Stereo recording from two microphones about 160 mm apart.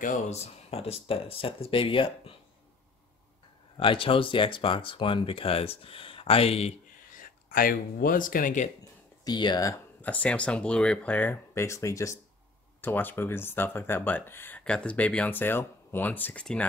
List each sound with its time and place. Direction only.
0.0 s speech: 50° left (ahead or behind)
3.7 s speech: 35° left (ahead or behind)
7.2 s speech: 60° left (ahead or behind)
9.2 s speech: 25° left (ahead or behind)
10.0 s speech: 10° left (ahead or behind)